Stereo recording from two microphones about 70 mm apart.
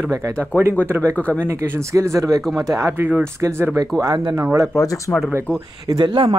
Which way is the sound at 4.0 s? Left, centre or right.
Right.